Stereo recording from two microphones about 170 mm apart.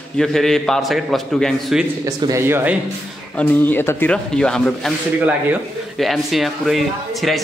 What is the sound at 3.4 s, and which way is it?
A man's voice, 10° left (ahead or behind).